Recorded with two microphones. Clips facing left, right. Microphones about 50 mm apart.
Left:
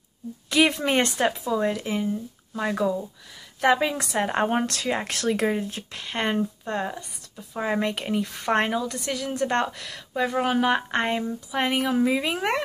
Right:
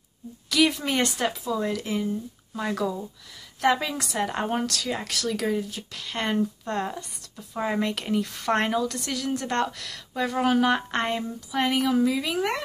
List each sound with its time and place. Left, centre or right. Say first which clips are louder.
0.5 s a woman's voice: left 2 dB; left